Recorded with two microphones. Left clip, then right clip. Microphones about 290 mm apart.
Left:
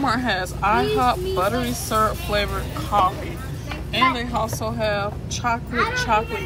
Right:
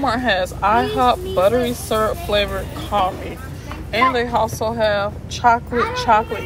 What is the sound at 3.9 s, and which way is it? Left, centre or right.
Speech, centre.